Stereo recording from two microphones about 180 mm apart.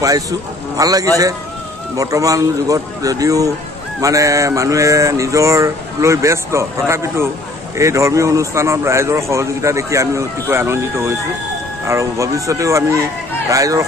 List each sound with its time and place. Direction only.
0.7 s speech: 20° right (ahead or behind)